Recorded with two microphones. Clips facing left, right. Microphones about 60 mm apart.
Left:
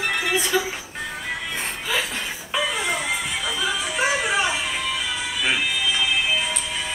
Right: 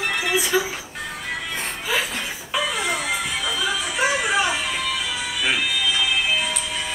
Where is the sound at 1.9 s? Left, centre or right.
Centre.